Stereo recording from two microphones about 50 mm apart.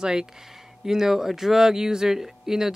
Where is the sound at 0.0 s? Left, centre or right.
Centre.